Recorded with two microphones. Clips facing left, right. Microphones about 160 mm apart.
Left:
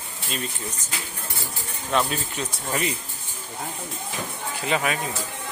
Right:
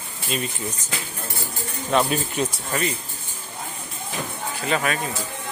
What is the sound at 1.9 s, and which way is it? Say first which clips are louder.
Speech: right 3 dB; 10° right (ahead or behind).